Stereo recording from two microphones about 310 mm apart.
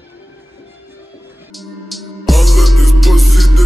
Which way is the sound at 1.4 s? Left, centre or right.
Centre.